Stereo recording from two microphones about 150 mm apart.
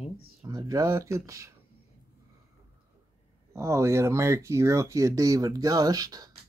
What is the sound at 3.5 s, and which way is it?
Speech, 20° right (ahead or behind).